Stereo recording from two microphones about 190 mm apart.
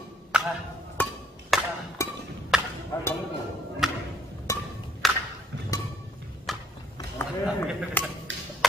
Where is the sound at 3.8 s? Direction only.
Centre (ahead or behind).